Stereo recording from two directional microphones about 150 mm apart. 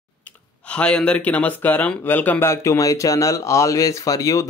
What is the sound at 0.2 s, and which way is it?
Speech, 10° left (ahead or behind).